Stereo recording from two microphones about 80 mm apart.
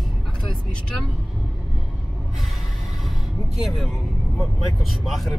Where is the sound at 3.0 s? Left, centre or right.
Centre.